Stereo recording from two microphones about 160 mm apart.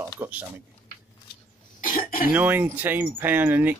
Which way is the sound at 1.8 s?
60° left (ahead or behind).